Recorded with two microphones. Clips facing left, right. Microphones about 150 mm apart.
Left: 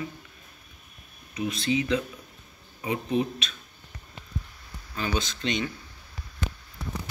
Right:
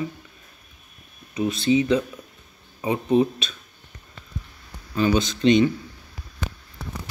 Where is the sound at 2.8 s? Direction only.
30° right (ahead or behind).